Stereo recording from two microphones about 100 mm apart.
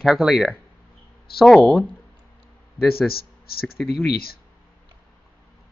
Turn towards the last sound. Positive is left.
turn(degrees=-5)  # may be behind; listen again after turning